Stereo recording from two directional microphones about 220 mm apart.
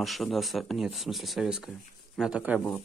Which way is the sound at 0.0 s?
Centre (ahead or behind).